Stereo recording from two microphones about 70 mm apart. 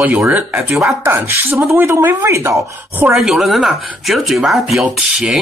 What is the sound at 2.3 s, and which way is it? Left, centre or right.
Speech, right.